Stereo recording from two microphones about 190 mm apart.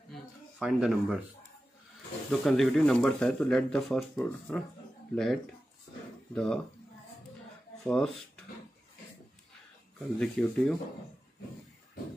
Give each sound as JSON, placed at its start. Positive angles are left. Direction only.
{"t": 0.1, "sound": "a sound", "side_deg": -5}
{"t": 2.4, "sound": "speech", "side_deg": 0}
{"t": 7.8, "sound": "speech", "side_deg": 5}
{"t": 9.9, "sound": "speech", "side_deg": 5}